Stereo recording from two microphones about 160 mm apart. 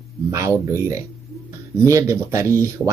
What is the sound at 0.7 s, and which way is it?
Speech, 20° right (ahead or behind).